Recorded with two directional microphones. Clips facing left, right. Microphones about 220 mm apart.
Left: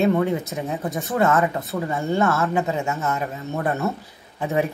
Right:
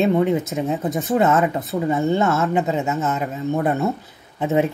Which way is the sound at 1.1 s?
20° right (ahead or behind).